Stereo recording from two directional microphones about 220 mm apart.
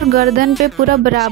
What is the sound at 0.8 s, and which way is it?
Speech, 45° right (ahead or behind).